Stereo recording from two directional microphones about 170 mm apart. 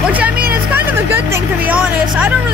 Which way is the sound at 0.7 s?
10° right (ahead or behind).